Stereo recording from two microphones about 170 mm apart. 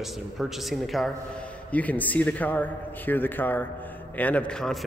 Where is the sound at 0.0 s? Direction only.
Centre (ahead or behind).